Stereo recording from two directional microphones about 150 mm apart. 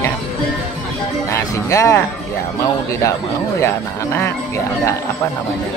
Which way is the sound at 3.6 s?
15° left (ahead or behind).